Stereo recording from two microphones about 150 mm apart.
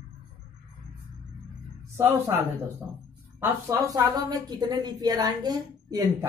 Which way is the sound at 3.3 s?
15° right (ahead or behind).